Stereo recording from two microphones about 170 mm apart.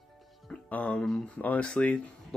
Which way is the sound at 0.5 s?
10° left (ahead or behind).